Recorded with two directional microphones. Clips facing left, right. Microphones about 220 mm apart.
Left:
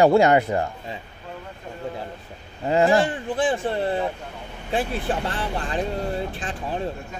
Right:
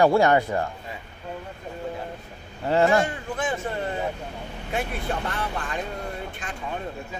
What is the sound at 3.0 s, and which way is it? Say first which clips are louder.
Speech: left 5 dB; 30° left (ahead or behind).